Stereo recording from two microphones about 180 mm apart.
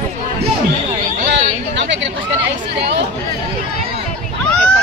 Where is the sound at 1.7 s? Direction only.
80° right.